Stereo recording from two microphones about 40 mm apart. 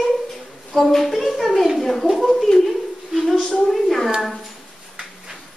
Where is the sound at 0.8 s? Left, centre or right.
Centre.